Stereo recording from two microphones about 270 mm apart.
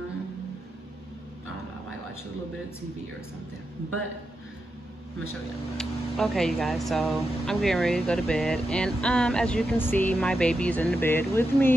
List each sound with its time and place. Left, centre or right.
5.8 s speech: centre